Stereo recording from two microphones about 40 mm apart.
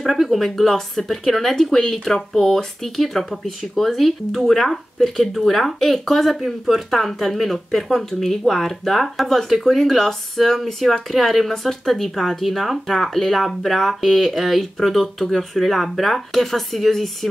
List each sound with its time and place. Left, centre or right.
0.0 s speech: centre